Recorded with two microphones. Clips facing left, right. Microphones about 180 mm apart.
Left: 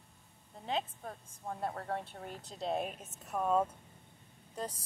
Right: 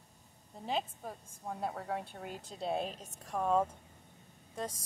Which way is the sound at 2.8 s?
30° right (ahead or behind).